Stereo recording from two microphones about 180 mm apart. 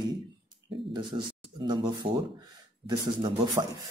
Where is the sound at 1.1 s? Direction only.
30° right (ahead or behind).